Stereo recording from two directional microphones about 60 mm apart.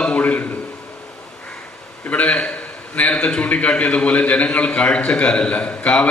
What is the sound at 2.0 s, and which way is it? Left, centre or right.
A man's voice, left.